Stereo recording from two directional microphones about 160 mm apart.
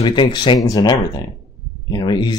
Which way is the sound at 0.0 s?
30° left (ahead or behind).